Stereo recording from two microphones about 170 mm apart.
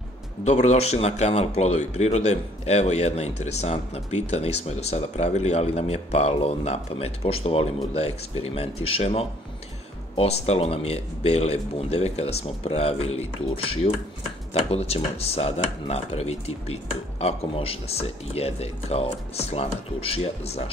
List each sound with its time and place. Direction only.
0.5 s speech: 40° left (ahead or behind)